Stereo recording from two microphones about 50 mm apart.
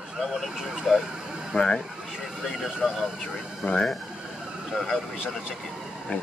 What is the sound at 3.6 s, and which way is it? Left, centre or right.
Speech, left.